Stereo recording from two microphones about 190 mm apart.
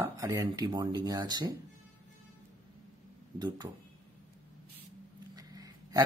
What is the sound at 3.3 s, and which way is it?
Speech, 20° right (ahead or behind).